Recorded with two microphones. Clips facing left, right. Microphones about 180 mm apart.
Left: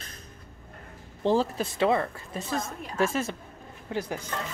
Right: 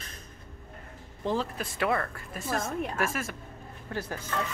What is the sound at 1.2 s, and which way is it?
A woman's voice, 30° left (ahead or behind).